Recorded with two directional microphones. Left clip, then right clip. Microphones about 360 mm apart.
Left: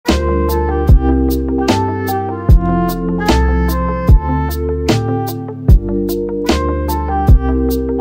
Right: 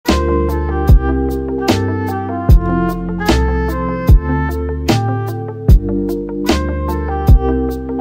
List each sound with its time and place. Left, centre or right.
0.7 s music: left
1.6 s music: centre
2.4 s music: left
3.3 s music: centre